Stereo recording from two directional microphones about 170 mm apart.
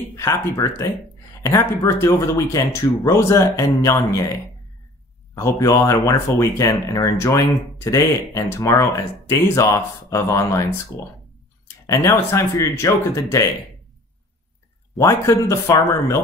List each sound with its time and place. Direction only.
0.1 s speech: 20° left (ahead or behind)
5.3 s speech: 20° left (ahead or behind)
11.6 s speech: 15° left (ahead or behind)
15.0 s speech: 15° left (ahead or behind)